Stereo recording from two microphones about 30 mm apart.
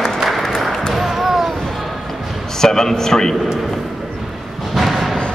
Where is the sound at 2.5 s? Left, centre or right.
Centre.